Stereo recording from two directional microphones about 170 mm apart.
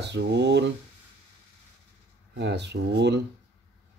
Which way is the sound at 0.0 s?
85° right.